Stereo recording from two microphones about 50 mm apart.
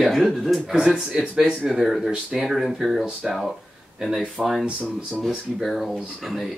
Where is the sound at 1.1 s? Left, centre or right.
Centre.